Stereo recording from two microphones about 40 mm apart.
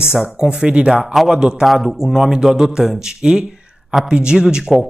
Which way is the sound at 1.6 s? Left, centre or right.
Centre.